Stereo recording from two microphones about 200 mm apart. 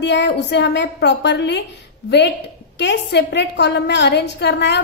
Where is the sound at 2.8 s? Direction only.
60° left (ahead or behind).